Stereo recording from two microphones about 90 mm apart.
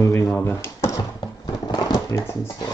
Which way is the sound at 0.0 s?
25° left (ahead or behind).